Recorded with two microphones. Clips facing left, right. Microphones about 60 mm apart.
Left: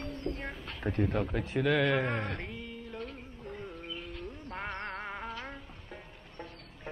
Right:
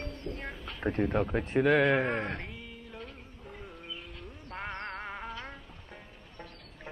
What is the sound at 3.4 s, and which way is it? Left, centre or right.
Music, centre.